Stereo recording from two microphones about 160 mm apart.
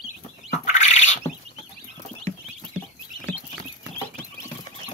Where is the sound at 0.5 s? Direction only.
45° left (ahead or behind).